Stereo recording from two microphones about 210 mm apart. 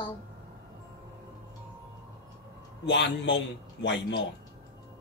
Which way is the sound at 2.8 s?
55° left (ahead or behind).